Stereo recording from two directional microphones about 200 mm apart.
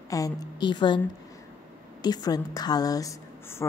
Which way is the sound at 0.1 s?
20° left (ahead or behind).